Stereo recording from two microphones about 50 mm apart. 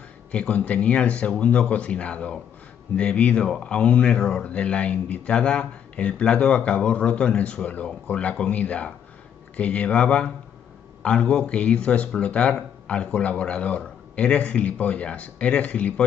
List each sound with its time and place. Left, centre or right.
0.3 s speech: left